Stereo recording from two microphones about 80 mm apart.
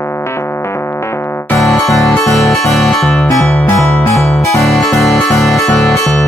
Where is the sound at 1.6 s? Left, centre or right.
Centre.